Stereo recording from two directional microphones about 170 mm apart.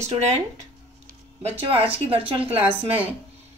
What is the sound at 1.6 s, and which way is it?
A woman's voice, 35° right (ahead or behind).